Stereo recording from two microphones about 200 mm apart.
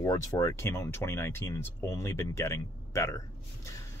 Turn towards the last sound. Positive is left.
turn(degrees=15)  # may be behind; listen again after turning